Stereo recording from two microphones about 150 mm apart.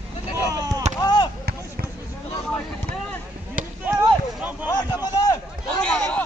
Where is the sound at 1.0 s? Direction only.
30° left (ahead or behind).